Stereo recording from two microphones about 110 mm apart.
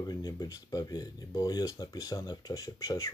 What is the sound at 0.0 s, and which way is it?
Speech, 35° left (ahead or behind).